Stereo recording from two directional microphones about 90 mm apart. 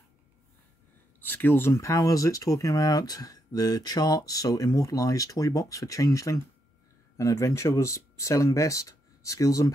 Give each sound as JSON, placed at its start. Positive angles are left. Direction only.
{"t": 1.2, "sound": "speech", "side_deg": 20}
{"t": 1.7, "sound": "speech", "side_deg": 35}